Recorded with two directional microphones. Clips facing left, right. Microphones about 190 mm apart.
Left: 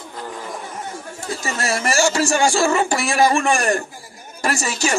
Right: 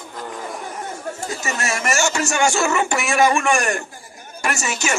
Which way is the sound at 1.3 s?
35° left (ahead or behind).